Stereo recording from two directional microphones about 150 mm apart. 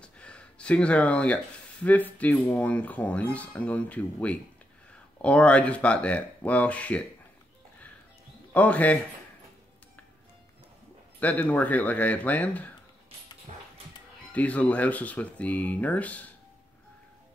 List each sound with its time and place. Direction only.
0.0 s speech: 5° left (ahead or behind)
8.5 s speech: 10° left (ahead or behind)
11.1 s speech: 10° left (ahead or behind)
13.5 s dog: 45° right (ahead or behind)
14.3 s speech: 10° left (ahead or behind)